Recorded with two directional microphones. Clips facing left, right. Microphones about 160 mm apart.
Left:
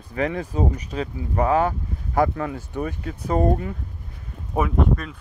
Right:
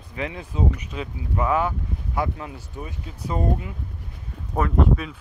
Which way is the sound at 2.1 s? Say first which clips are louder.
Left 7 dB; 55° left (ahead or behind).